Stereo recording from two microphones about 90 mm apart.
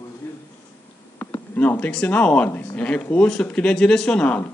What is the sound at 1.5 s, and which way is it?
Speech, 20° left (ahead or behind).